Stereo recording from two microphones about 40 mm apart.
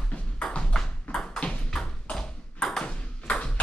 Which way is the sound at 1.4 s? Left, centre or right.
Left.